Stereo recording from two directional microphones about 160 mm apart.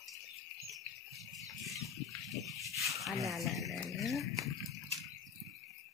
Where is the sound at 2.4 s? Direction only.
Centre (ahead or behind).